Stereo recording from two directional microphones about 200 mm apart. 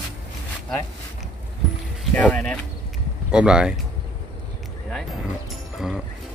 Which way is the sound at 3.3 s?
5° right (ahead or behind).